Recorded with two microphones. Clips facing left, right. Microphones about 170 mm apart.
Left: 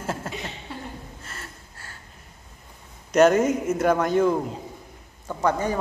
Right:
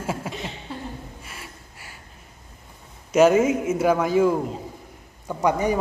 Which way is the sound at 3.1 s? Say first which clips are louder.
Right 1 dB; 5° right (ahead or behind).